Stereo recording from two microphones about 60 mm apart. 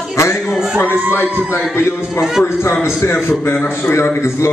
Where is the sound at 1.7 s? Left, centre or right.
Left.